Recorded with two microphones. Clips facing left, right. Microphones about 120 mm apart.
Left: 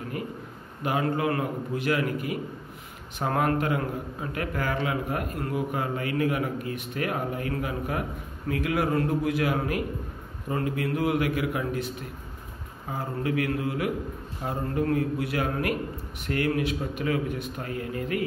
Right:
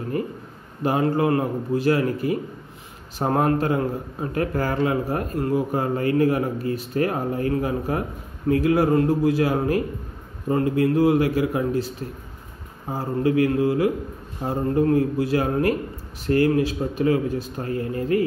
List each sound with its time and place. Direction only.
0.8 s a man's voice: 35° right (ahead or behind)
12.9 s a man's voice: 30° right (ahead or behind)